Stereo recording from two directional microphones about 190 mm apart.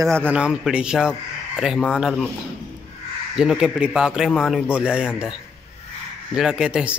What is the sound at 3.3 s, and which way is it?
Speech, 5° right (ahead or behind).